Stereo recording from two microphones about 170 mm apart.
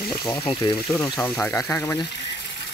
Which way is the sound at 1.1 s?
10° left (ahead or behind).